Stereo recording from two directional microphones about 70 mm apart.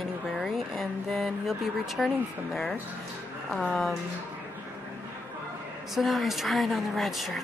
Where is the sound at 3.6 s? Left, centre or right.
Centre.